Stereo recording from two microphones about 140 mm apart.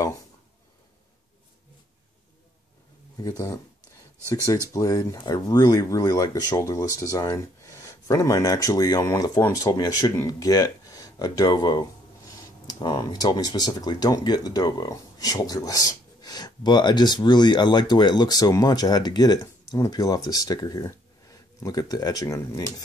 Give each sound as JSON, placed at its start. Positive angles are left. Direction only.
{"t": 3.2, "sound": "speech", "side_deg": 25}
{"t": 4.7, "sound": "speech", "side_deg": 25}